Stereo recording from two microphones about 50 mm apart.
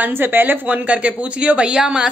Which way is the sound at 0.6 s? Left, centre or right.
Right.